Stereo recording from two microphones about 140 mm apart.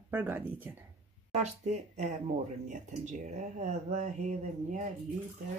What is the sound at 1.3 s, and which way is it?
Speech, 55° right (ahead or behind).